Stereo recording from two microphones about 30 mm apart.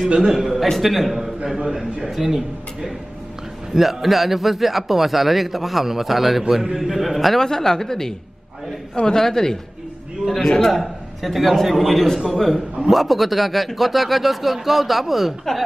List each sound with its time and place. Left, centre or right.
0.3 s a man's voice: centre
0.7 s a man's voice: centre
1.2 s a man's voice: centre
3.7 s a man's voice: centre
7.3 s a woman's voice: centre
10.7 s a man's voice: centre